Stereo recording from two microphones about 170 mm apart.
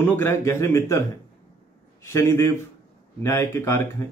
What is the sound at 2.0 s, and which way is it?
A man's voice, 15° left (ahead or behind).